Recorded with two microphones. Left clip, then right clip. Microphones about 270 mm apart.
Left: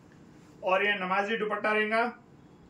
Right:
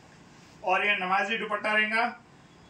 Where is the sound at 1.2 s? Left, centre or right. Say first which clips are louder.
Even; centre.